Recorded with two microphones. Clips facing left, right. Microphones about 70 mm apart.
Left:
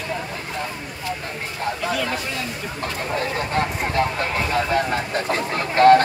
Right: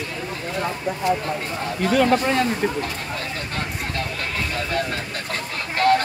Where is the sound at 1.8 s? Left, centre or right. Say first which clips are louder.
Right 11 dB; right.